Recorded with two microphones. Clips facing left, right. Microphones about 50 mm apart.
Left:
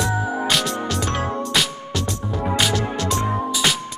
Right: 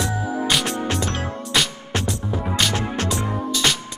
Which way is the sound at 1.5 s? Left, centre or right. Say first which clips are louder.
Right 4 dB; centre.